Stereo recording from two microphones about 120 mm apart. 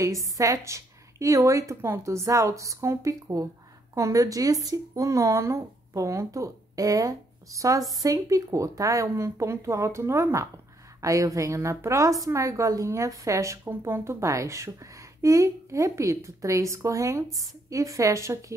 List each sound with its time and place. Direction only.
0.0 s speech: 25° right (ahead or behind)